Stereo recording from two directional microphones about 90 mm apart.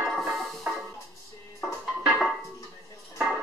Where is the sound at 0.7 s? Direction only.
20° right (ahead or behind).